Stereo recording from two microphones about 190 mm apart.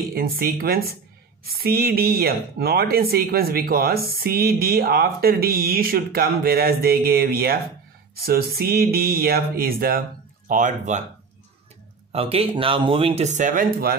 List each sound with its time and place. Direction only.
0.1 s speech: 50° right (ahead or behind)
12.1 s speech: 30° right (ahead or behind); by 13.9 s 50° right (ahead or behind)